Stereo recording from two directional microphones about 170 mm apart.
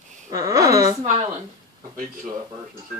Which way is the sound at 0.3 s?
20° right (ahead or behind).